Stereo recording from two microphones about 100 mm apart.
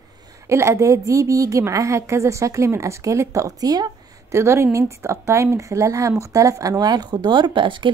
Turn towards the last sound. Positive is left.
turn(degrees=-55)  # may be behind; listen again after turning